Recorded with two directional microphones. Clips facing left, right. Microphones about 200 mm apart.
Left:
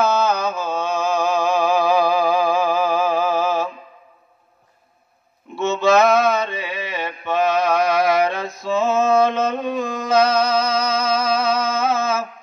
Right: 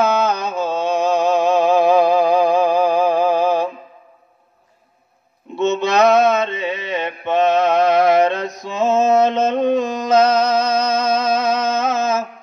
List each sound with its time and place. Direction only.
0.0 s mantra: 15° right (ahead or behind)
5.6 s mantra: 20° right (ahead or behind)
10.2 s music: 20° right (ahead or behind)